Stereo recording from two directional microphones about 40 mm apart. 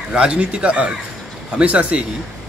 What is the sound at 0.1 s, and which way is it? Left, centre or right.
Speech, right.